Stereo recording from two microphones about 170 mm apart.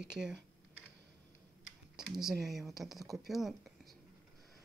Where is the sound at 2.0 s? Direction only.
5° right (ahead or behind).